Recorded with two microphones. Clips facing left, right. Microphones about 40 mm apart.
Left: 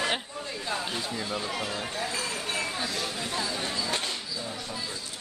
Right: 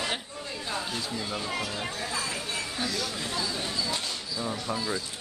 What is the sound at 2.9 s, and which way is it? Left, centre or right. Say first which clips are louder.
Speech: even; left.